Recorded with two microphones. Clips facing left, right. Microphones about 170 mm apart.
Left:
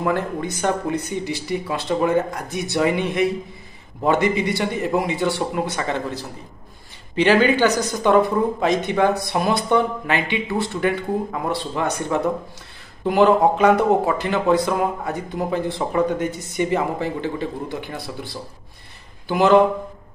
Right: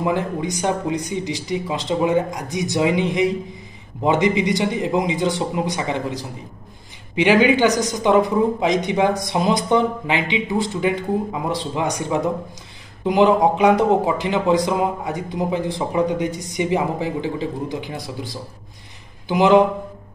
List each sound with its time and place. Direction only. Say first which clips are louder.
0.0 s speech: right 1 dB; 15° right (ahead or behind)